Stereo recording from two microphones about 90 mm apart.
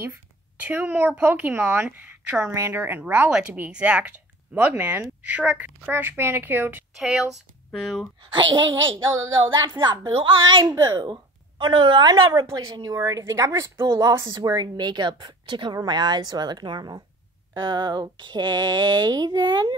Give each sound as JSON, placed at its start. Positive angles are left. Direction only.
{"t": 0.6, "sound": "a woman's voice", "side_deg": -20}
{"t": 2.5, "sound": "a woman's voice", "side_deg": -30}
{"t": 2.8, "sound": "a woman's voice", "side_deg": -20}
{"t": 7.0, "sound": "speech", "side_deg": 0}
{"t": 8.2, "sound": "a sound", "side_deg": -60}
{"t": 10.7, "sound": "speech", "side_deg": -50}
{"t": 11.5, "sound": "a sound", "side_deg": -70}
{"t": 12.4, "sound": "a woman's voice", "side_deg": -35}
{"t": 14.4, "sound": "speech", "side_deg": -50}
{"t": 17.6, "sound": "a sound", "side_deg": -55}